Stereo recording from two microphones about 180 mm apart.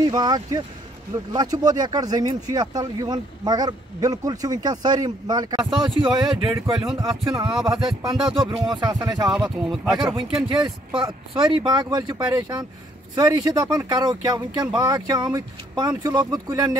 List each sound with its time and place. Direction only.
0.0 s speech: 25° right (ahead or behind)
6.5 s speech: 15° right (ahead or behind)
10.2 s speech: 5° right (ahead or behind)
10.6 s speech: 30° right (ahead or behind)